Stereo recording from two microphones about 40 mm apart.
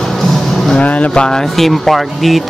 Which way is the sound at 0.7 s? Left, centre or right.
Left.